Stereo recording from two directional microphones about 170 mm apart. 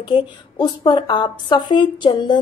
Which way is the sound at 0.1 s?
25° left (ahead or behind).